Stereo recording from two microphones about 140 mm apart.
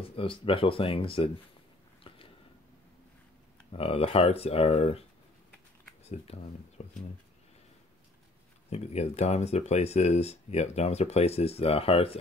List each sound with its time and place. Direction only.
0.1 s speech: 40° left (ahead or behind)
2.1 s a sound: 40° left (ahead or behind)
3.7 s speech: 45° left (ahead or behind)
6.0 s speech: 50° left (ahead or behind)
8.6 s speech: 50° left (ahead or behind)